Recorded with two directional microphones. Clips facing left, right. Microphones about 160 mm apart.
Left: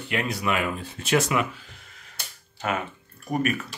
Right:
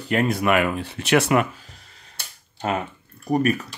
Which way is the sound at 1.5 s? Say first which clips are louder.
Even; 40° right (ahead or behind).